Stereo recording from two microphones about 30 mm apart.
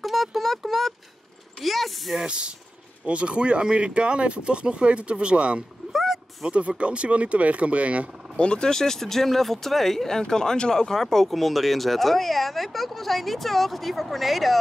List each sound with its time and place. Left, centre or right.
0.0 s a sound: centre
2.2 s speech: right
8.4 s speech: left; by 10.0 s centre
10.3 s speech: left; by 14.6 s centre